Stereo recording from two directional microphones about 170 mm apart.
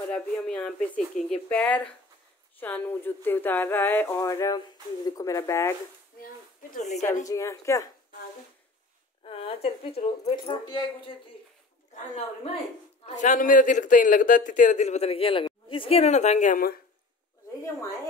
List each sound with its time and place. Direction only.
0.1 s speech: 5° left (ahead or behind)
6.2 s speech: 50° left (ahead or behind)
7.2 s speech: 15° left (ahead or behind)
9.2 s speech: 35° left (ahead or behind)
13.0 s a man's voice: 45° left (ahead or behind)